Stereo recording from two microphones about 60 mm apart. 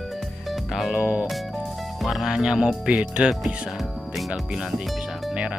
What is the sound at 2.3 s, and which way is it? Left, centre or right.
Speech, centre.